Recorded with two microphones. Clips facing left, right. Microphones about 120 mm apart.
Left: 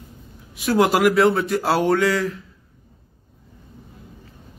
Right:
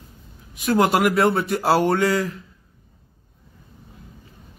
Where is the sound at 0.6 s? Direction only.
Centre (ahead or behind).